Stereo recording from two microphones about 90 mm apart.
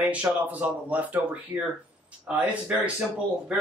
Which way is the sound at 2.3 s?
15° right (ahead or behind).